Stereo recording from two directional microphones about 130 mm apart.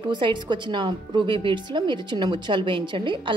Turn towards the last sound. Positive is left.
turn(degrees=-40)  # may be behind; listen again after turning